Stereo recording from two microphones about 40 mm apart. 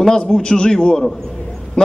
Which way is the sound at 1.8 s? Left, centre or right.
Left.